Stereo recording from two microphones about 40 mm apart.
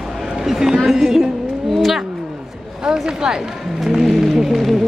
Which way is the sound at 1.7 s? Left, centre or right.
Centre.